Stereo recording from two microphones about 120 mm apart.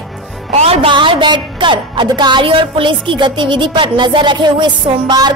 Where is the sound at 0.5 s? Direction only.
55° right (ahead or behind).